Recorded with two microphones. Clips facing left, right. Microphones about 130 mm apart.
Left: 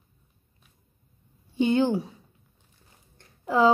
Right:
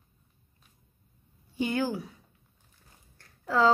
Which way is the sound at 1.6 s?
25° left (ahead or behind).